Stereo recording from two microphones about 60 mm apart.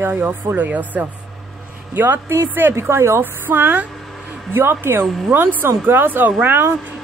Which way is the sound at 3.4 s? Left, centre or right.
Right.